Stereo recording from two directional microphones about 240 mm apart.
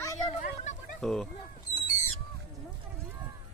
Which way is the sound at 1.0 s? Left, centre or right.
Centre.